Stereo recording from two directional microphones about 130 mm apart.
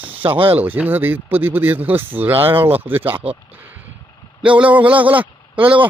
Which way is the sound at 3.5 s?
15° right (ahead or behind).